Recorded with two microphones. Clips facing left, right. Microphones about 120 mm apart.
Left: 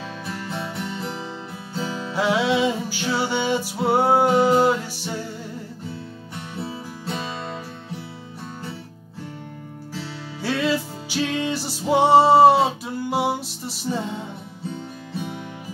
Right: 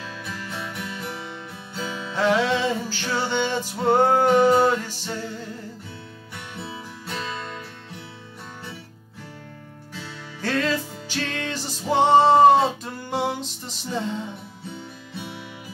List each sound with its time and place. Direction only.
0.5 s music: 25° left (ahead or behind)
2.1 s music: 10° left (ahead or behind)
10.4 s music: 10° left (ahead or behind)